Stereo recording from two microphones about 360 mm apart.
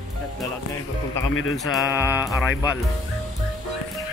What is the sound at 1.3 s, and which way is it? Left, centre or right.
Speech, left.